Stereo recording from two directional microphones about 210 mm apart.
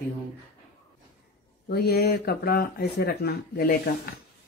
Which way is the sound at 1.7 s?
50° left (ahead or behind).